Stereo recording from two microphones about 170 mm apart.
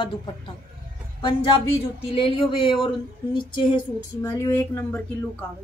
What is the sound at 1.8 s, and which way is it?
Speech, 30° left (ahead or behind).